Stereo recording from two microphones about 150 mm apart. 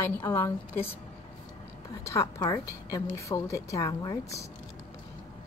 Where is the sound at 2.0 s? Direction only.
20° left (ahead or behind).